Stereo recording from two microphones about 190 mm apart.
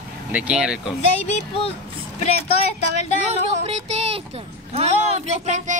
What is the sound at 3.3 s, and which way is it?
Speech, 35° right (ahead or behind).